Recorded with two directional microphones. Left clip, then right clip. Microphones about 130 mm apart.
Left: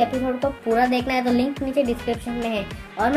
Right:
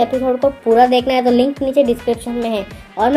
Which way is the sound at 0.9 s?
30° right (ahead or behind).